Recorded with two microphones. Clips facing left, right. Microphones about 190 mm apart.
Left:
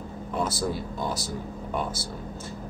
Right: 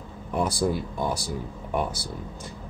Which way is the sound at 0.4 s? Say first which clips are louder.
Right 3 dB; 15° right (ahead or behind).